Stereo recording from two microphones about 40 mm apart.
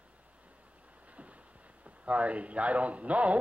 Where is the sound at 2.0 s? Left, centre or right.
Right.